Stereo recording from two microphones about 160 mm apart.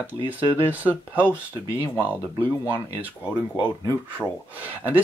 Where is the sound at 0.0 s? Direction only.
10° right (ahead or behind).